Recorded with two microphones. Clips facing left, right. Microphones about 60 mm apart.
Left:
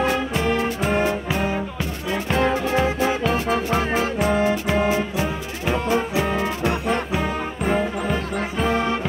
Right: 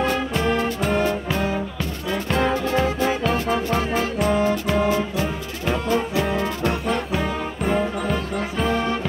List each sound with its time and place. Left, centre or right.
0.0 s music: centre